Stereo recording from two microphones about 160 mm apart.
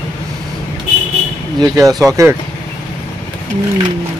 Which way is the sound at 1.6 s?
25° right (ahead or behind).